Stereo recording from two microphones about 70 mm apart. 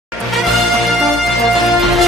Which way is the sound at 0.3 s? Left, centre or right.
Centre.